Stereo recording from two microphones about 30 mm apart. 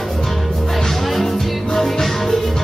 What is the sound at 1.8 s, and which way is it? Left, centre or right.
Music, centre.